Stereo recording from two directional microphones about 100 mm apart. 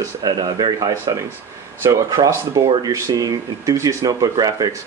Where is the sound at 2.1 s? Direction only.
40° right (ahead or behind).